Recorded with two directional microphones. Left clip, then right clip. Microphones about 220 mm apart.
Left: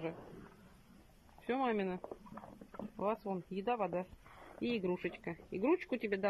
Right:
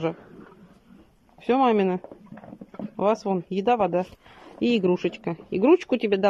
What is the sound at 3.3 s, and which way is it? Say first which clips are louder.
Speech: right 15 dB; 15° right (ahead or behind).